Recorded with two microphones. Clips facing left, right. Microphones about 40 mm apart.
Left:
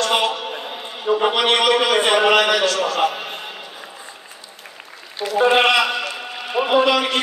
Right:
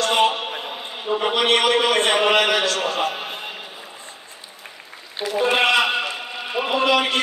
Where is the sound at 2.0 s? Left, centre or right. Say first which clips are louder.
Left 3 dB; left.